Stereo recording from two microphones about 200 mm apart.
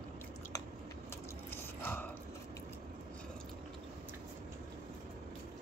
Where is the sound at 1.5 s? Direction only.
10° left (ahead or behind).